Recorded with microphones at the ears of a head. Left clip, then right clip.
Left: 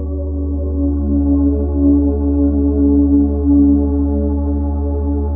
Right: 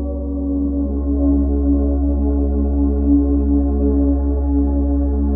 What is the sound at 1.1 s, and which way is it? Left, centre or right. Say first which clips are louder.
Singing bowl: left 2 dB; left.